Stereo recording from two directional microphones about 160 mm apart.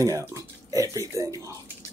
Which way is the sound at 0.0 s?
20° right (ahead or behind).